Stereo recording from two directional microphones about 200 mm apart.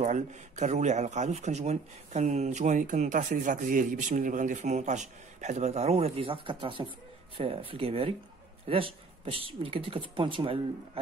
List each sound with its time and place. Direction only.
0.0 s speech: 35° right (ahead or behind)